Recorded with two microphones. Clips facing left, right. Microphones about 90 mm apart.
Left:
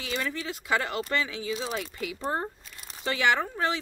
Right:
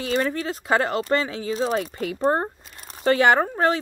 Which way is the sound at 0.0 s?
45° right (ahead or behind).